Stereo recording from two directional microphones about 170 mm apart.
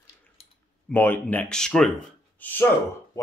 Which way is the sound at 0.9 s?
10° left (ahead or behind).